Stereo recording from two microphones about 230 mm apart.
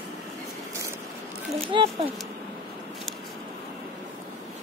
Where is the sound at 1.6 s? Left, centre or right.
Right.